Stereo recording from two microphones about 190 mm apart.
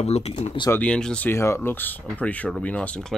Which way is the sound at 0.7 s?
5° left (ahead or behind).